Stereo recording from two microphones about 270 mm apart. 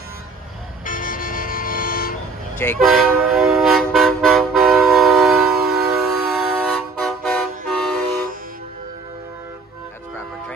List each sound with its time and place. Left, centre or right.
0.8 s vehicle: left
2.6 s toot: centre